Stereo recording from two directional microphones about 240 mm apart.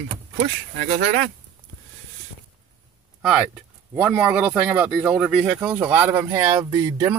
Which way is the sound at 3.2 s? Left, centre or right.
Centre.